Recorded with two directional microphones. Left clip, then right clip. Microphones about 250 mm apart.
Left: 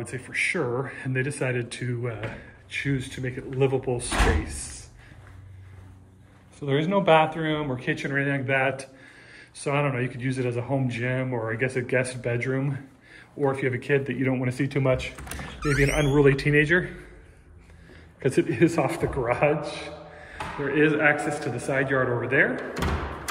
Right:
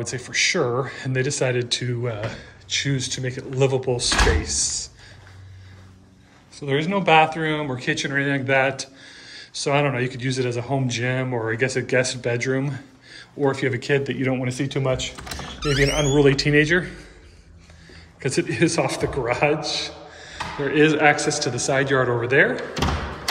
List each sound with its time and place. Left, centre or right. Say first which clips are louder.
0.0 s speech: right 5 dB; centre
6.6 s speech: right 1 dB; centre
15.2 s a sound: right 3 dB; right
15.8 s speech: right 3 dB; centre
18.2 s speech: right 1 dB; centre